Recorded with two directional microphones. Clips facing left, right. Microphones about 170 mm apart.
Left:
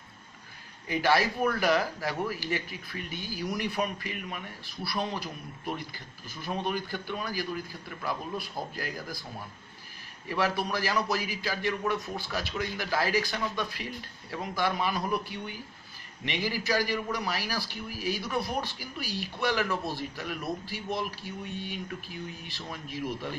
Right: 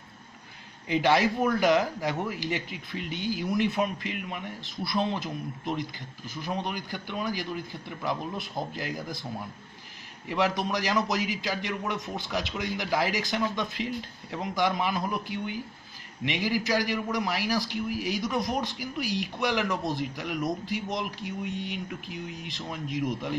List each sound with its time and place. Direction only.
0.8 s a man's voice: 20° right (ahead or behind)
10.2 s a man's voice: 20° right (ahead or behind)